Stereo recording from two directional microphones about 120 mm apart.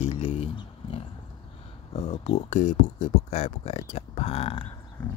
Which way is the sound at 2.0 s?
65° left (ahead or behind).